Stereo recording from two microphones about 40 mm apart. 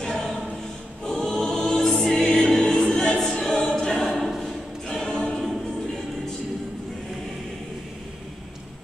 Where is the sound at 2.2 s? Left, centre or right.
Centre.